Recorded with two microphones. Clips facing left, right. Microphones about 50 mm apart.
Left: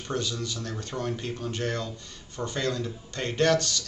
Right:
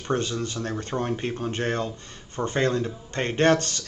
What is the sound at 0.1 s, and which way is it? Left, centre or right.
Speech, right.